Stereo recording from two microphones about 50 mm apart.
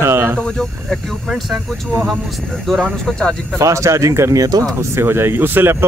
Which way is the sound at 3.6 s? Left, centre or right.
Right.